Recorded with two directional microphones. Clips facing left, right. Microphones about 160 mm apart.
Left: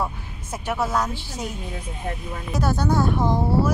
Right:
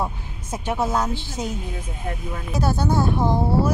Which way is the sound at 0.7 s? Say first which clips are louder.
Right 1 dB; 20° right (ahead or behind).